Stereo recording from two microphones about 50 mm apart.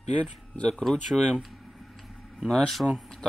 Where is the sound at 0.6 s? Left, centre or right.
Centre.